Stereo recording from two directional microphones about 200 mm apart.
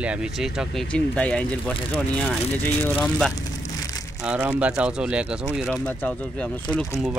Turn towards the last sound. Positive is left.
turn(degrees=0)  # may be behind; listen again after turning